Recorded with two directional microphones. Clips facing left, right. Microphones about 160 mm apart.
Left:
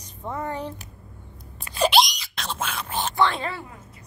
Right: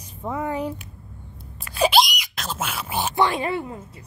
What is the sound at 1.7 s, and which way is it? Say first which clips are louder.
Wail: right 1 dB; centre (ahead or behind).